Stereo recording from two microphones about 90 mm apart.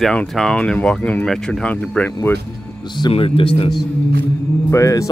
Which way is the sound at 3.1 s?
90° left.